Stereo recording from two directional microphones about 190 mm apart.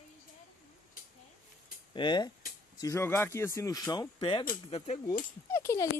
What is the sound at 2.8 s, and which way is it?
Speech, 15° left (ahead or behind).